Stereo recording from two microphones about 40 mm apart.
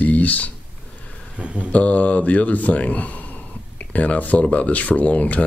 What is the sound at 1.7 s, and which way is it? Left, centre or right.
Speech, left.